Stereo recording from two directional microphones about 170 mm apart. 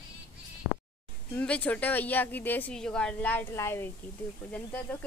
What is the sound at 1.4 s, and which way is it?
A woman's voice, 5° left (ahead or behind).